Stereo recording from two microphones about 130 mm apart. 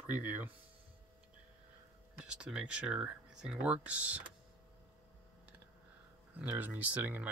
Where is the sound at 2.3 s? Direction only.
5° right (ahead or behind).